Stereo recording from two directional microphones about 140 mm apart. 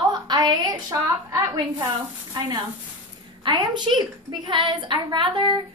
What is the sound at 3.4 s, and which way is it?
A woman's voice, 30° right (ahead or behind).